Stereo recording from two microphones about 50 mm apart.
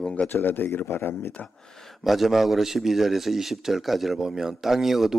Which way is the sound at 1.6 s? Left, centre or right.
Centre.